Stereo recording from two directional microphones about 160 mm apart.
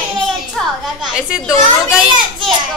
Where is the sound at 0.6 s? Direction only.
Centre (ahead or behind).